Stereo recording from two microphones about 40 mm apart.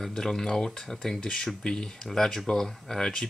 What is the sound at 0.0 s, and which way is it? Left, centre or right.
Speech, centre.